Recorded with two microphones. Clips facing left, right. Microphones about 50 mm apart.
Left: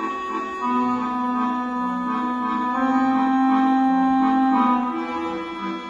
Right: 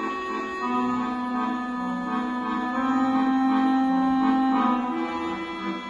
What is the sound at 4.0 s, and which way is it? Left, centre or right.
Music, left.